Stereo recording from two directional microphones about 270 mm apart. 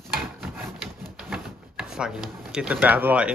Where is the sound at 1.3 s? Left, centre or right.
Centre.